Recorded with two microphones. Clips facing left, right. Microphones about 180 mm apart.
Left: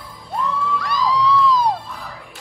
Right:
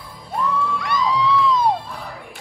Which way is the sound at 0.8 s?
Centre (ahead or behind).